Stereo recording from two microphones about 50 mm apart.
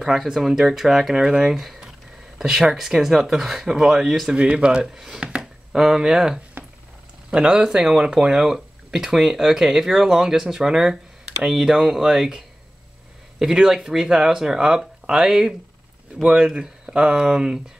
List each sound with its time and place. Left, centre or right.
0.0 s speech: centre
4.3 s speech: right
13.4 s speech: centre